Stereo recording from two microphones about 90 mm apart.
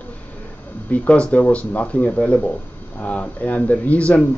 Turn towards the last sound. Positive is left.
turn(degrees=15)  # may be behind; listen again after turning